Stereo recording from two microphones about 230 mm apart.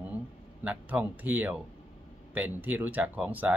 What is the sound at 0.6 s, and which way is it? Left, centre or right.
Speech, centre.